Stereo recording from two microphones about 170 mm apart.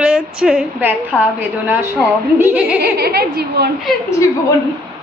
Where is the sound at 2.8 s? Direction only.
65° right (ahead or behind).